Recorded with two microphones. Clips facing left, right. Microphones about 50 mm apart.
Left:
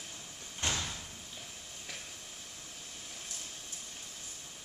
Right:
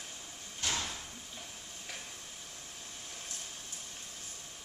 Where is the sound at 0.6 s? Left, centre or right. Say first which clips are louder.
Left 1 dB; left.